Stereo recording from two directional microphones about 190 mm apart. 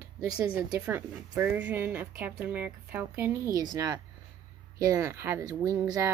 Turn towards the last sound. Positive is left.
turn(degrees=-20)  # may be behind; listen again after turning